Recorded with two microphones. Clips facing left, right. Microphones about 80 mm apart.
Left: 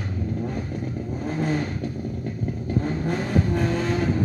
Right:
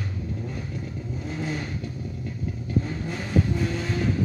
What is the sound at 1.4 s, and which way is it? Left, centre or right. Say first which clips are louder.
Vehicle: left 6 dB; left.